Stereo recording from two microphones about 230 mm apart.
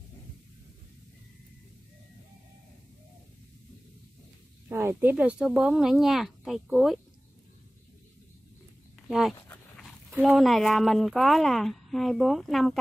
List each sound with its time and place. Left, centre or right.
4.6 s speech: centre
10.1 s speech: centre